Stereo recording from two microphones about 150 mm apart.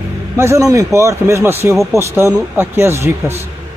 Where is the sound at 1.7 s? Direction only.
Centre (ahead or behind).